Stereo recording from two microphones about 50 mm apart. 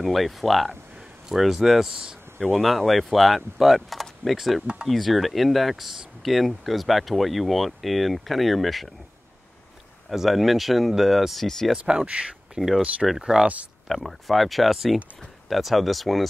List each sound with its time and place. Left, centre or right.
0.0 s speech: centre
10.0 s speech: centre
11.4 s speech: centre
12.2 s speech: right
12.5 s speech: centre
13.8 s speech: centre